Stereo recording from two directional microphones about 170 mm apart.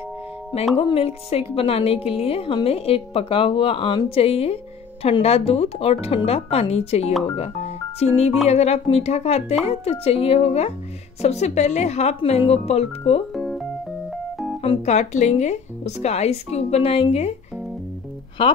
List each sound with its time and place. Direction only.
0.7 s a woman's voice: 35° left (ahead or behind)
7.3 s music: 40° left (ahead or behind)
8.5 s a woman's voice: 40° left (ahead or behind)
13.3 s music: centre (ahead or behind)
14.1 s keyboard: centre (ahead or behind)
14.6 s a woman's voice: 40° left (ahead or behind)